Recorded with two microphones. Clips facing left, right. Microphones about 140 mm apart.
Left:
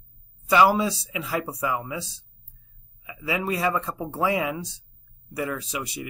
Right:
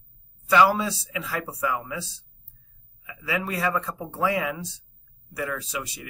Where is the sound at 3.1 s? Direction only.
20° left (ahead or behind).